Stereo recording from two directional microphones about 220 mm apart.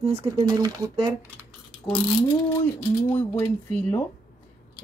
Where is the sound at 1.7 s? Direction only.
5° left (ahead or behind).